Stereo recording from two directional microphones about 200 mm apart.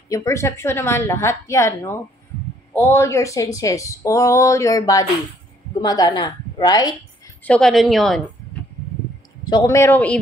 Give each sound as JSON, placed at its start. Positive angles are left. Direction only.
{"t": 0.1, "sound": "a woman's voice", "side_deg": 15}
{"t": 7.4, "sound": "a woman's voice", "side_deg": 5}
{"t": 9.5, "sound": "speech", "side_deg": 15}